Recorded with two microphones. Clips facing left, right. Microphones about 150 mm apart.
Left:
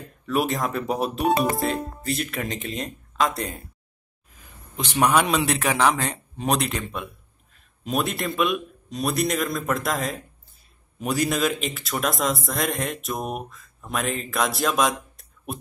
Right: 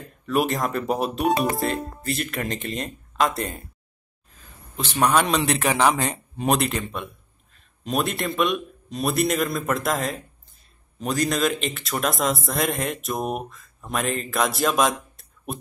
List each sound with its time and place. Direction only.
0.3 s speech: centre (ahead or behind)
4.3 s a man's voice: 15° left (ahead or behind)